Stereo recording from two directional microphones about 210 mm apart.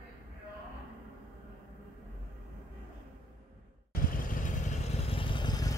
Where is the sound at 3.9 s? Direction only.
40° left (ahead or behind); by 5.7 s 20° left (ahead or behind).